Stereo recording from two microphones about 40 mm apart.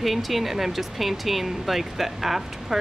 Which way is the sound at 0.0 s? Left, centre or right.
Centre.